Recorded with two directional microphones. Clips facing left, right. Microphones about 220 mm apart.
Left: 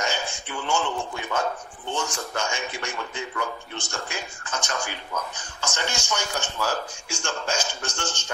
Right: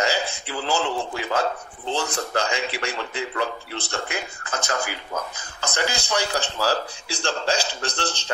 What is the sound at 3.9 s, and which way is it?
A man's voice, 90° right.